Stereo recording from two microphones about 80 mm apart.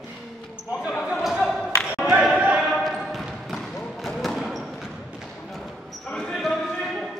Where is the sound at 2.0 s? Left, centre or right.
Centre.